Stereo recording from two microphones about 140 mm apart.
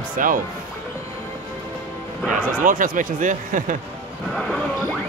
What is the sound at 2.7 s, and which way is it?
Speech, 70° right (ahead or behind).